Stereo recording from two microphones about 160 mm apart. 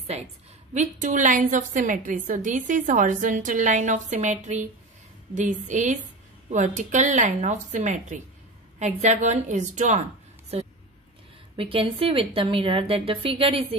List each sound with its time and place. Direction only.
0.7 s a woman's voice: 50° right (ahead or behind); by 13.7 s 35° right (ahead or behind)